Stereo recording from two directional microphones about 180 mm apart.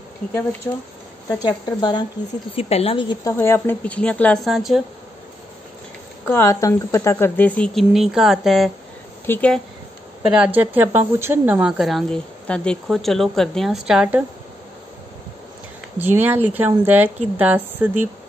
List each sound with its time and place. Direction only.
1.4 s a woman's voice: 25° left (ahead or behind)
3.3 s speech: 15° left (ahead or behind)
6.2 s speech: 15° left (ahead or behind); by 8.7 s centre (ahead or behind)
9.2 s speech: 10° left (ahead or behind)
10.3 s a woman's voice: 10° right (ahead or behind)
16.0 s a woman's voice: 10° right (ahead or behind)